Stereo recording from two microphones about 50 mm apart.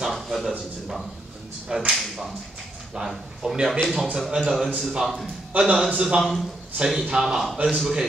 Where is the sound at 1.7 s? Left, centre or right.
Centre.